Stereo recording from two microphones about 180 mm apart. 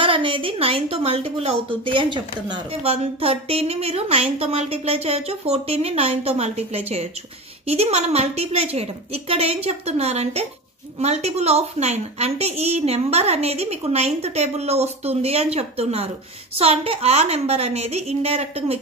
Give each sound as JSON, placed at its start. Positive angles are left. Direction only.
{"t": 0.0, "sound": "a woman's voice", "side_deg": -30}